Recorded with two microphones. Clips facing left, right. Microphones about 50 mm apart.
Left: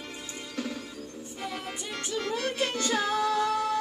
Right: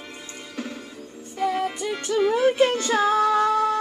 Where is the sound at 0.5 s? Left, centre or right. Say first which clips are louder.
Right 1 dB; centre.